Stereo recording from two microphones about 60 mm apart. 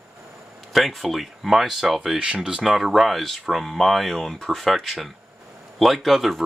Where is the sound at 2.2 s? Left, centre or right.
Centre.